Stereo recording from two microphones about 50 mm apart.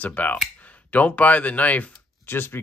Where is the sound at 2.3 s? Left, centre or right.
Left.